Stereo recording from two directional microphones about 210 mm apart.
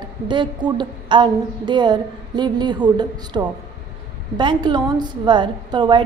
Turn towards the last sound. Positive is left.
turn(degrees=-20)  # may be behind; listen again after turning